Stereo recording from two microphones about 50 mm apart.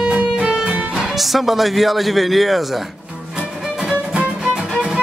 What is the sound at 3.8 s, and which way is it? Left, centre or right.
Music, centre.